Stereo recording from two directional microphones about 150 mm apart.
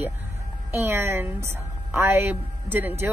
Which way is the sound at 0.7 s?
15° right (ahead or behind).